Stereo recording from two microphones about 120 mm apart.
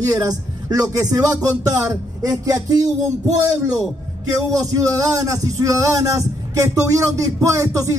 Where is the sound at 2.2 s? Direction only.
30° right (ahead or behind).